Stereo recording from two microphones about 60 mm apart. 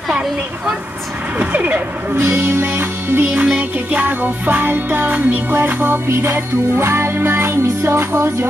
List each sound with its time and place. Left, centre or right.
1.4 s music: right